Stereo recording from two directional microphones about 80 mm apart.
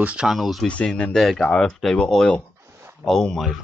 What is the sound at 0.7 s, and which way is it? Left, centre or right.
Speech, centre.